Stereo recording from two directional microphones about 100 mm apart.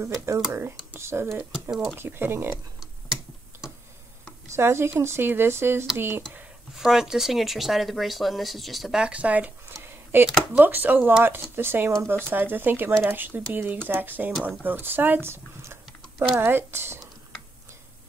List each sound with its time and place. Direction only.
0.0 s speech: 30° right (ahead or behind)
1.5 s speech: centre (ahead or behind)
2.0 s speech: 20° right (ahead or behind)
4.6 s speech: 25° right (ahead or behind)
6.8 s speech: 5° right (ahead or behind)
14.6 s typing: 20° right (ahead or behind)
16.3 s speech: 25° right (ahead or behind)